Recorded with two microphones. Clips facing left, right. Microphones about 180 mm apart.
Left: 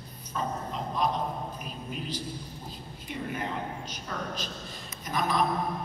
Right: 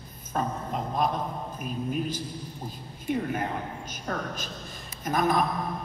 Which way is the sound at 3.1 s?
50° right (ahead or behind).